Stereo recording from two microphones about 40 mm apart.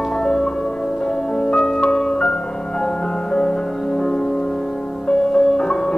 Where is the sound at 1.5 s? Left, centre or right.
Centre.